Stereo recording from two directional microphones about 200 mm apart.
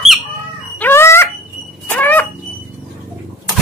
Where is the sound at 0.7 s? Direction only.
10° left (ahead or behind).